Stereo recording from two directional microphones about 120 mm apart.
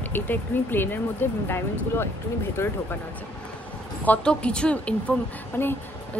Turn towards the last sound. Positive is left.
turn(degrees=15)  # may be behind; listen again after turning